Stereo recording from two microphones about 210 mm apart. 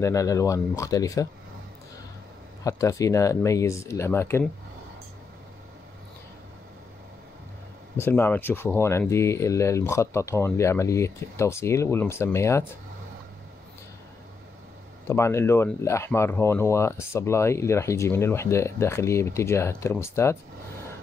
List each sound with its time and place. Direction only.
0.0 s speech: 15° left (ahead or behind)
2.6 s speech: 15° left (ahead or behind)
8.0 s speech: 10° left (ahead or behind)
15.0 s speech: 10° left (ahead or behind)